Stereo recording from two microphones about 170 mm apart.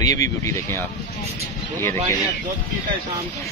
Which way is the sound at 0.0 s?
20° left (ahead or behind).